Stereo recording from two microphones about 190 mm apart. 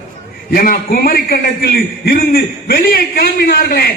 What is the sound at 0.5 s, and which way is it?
A man's voice, 50° left (ahead or behind).